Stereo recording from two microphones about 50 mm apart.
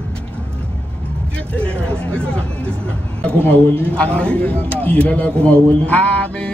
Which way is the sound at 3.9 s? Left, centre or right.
Left.